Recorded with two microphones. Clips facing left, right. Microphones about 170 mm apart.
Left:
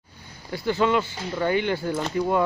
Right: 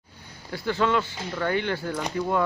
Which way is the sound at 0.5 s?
10° left (ahead or behind).